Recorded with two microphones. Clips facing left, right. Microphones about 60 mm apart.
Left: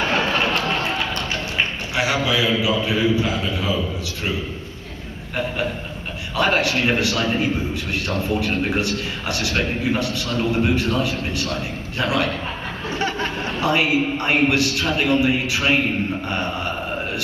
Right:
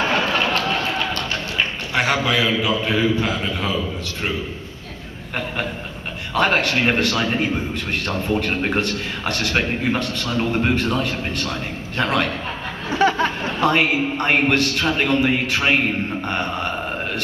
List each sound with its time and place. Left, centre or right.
2.0 s a sound: right
2.6 s a man's voice: right
6.3 s a man's voice: right
12.9 s snicker: right
13.6 s a man's voice: right
16.3 s a sound: right